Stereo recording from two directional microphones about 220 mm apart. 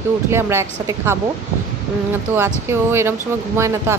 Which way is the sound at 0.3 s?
10° right (ahead or behind).